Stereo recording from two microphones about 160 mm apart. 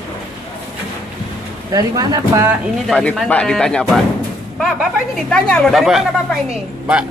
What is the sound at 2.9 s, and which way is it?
Speech, centre (ahead or behind).